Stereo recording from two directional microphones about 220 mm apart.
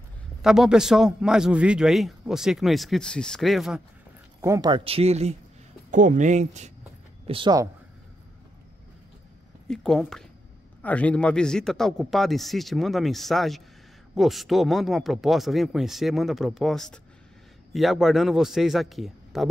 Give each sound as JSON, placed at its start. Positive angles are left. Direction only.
{"t": 0.4, "sound": "a man's voice", "side_deg": 0}
{"t": 4.4, "sound": "speech", "side_deg": -15}
{"t": 7.2, "sound": "speech", "side_deg": -20}
{"t": 9.7, "sound": "a man's voice", "side_deg": 0}